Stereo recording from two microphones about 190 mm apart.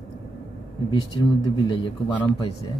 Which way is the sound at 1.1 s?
25° left (ahead or behind).